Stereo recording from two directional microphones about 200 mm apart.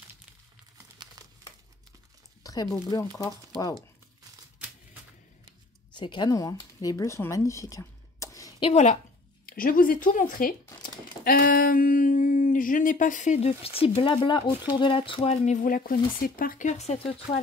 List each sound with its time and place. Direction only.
1.0 s crumpling: 20° right (ahead or behind)
2.4 s a sound: 20° left (ahead or behind)
2.9 s speech: 15° left (ahead or behind)
5.9 s speech: 20° left (ahead or behind)
9.5 s speech: 45° left (ahead or behind)